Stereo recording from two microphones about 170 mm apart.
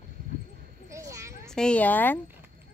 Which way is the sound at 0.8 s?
15° right (ahead or behind).